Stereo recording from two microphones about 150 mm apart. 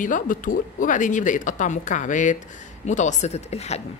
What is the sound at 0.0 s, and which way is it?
A woman's voice, 60° left (ahead or behind).